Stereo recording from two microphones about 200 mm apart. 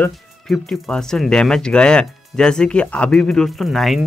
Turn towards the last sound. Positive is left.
turn(degrees=0)  # may be behind; listen again after turning